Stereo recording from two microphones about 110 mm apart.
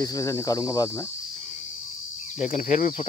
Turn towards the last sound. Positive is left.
turn(degrees=90)